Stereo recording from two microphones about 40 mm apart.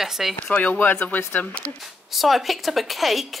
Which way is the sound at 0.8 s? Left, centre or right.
Left.